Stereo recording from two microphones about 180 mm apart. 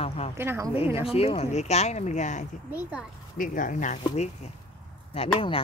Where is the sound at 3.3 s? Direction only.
45° left (ahead or behind).